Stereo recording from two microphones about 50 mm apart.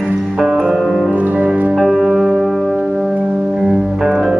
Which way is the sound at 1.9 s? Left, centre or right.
Centre.